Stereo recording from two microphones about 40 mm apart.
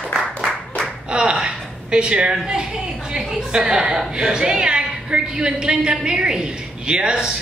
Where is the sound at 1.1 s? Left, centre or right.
Right.